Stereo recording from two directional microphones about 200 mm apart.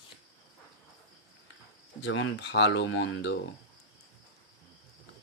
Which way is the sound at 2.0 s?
70° left (ahead or behind).